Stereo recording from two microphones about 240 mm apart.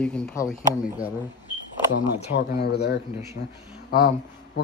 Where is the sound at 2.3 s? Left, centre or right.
Left.